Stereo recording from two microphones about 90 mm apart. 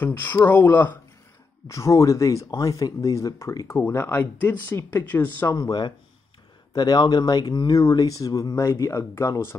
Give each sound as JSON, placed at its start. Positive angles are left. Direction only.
{"t": 0.0, "sound": "speech", "side_deg": 20}
{"t": 1.7, "sound": "speech", "side_deg": 35}
{"t": 5.5, "sound": "speech", "side_deg": 45}